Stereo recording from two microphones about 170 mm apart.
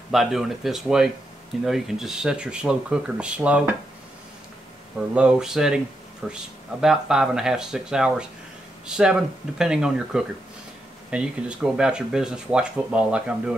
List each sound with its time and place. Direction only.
0.1 s speech: centre (ahead or behind)
5.1 s speech: 5° right (ahead or behind)